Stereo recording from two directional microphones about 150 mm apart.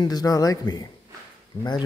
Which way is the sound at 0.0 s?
25° left (ahead or behind).